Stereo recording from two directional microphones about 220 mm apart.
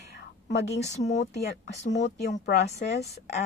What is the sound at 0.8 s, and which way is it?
Speech, 30° left (ahead or behind).